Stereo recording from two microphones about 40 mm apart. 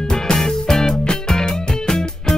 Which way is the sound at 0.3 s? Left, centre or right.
Centre.